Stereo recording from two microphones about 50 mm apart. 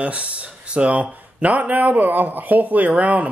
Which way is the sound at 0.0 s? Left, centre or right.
Right.